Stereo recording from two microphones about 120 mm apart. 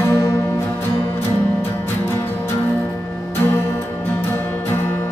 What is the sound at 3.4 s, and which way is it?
Music, 20° left (ahead or behind).